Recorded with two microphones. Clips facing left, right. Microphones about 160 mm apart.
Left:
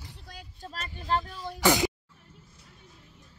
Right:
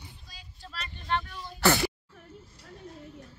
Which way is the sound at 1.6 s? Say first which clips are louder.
Left 1 dB; 15° left (ahead or behind).